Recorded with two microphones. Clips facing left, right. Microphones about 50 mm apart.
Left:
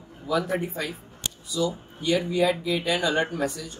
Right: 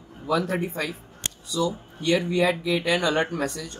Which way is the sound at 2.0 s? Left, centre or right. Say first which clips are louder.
Right 1 dB; right.